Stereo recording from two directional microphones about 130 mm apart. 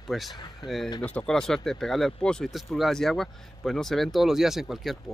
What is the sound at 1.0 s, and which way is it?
Speech, 5° left (ahead or behind).